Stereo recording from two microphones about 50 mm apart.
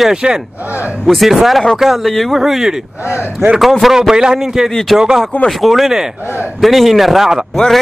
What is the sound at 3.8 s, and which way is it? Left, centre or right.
Speech, centre.